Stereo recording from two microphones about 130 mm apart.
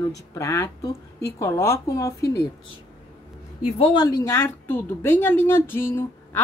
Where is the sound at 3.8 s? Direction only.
35° left (ahead or behind).